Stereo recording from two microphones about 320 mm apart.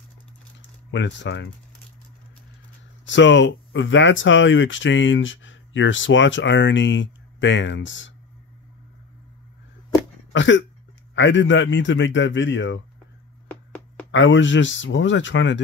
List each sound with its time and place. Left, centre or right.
0.9 s speech: left
3.1 s speech: left
10.3 s cough: left
11.1 s speech: left
13.5 s music: centre
14.1 s speech: left